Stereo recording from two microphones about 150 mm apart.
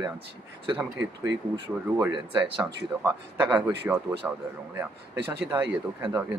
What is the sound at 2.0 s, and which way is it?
Speech, 10° right (ahead or behind).